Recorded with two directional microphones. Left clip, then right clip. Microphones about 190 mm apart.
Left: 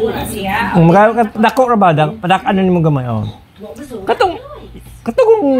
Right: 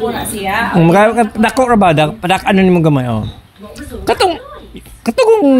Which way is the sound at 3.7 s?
25° right (ahead or behind).